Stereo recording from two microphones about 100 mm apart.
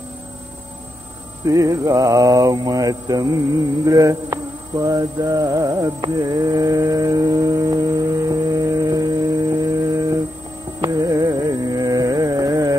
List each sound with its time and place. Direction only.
1.4 s mantra: 35° right (ahead or behind)
10.8 s carnatic music: 40° right (ahead or behind)